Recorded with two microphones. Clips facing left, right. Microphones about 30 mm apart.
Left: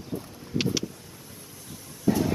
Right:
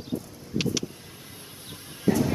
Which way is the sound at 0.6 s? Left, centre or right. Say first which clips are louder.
Even; centre.